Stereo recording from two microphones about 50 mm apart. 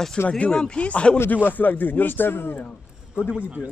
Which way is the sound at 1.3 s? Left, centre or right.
Left.